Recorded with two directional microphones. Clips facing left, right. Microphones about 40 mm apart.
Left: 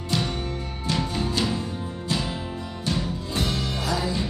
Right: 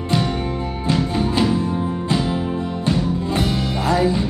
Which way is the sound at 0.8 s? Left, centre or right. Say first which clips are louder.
Right 6 dB; centre.